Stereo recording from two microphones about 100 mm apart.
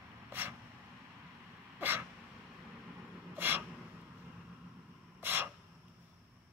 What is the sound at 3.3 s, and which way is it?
Gasp, 20° right (ahead or behind).